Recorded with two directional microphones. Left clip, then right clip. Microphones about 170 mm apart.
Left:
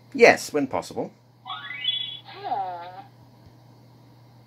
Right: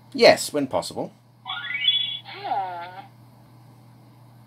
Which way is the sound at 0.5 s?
10° right (ahead or behind).